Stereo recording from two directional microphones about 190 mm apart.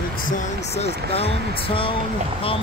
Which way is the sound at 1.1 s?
30° left (ahead or behind).